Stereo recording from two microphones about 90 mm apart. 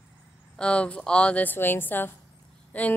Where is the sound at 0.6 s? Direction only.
10° left (ahead or behind).